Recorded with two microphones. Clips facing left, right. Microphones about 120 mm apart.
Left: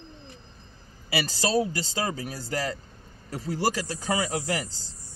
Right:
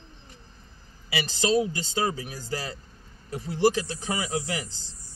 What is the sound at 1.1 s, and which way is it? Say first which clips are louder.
Speech: right 1 dB; 35° left (ahead or behind).